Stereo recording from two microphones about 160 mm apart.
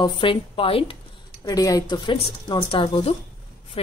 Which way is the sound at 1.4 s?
25° left (ahead or behind).